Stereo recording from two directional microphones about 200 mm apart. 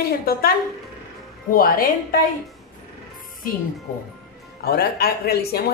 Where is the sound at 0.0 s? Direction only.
50° left (ahead or behind).